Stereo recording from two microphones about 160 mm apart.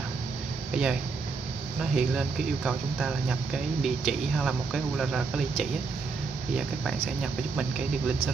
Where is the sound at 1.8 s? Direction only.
5° right (ahead or behind).